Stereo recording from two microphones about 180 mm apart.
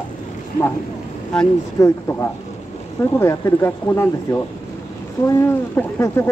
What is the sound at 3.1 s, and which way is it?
Speech, 15° left (ahead or behind).